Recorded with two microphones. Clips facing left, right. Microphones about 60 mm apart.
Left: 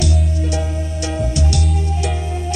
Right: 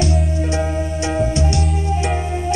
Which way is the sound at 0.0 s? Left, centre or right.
Right.